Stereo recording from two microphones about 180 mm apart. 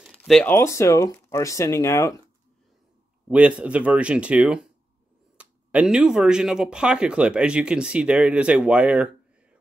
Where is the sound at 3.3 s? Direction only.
5° right (ahead or behind).